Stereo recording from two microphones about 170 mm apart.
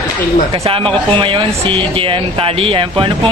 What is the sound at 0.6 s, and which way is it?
Speech, 30° right (ahead or behind).